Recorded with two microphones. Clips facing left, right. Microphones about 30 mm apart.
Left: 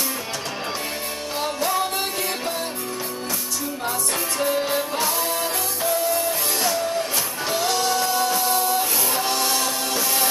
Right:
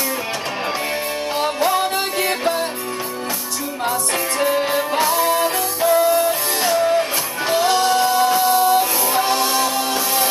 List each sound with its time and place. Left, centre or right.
1.4 s music: right
4.4 s music: centre